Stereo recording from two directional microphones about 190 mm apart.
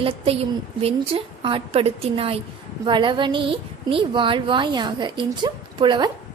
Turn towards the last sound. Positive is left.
turn(degrees=-25)  # may be behind; listen again after turning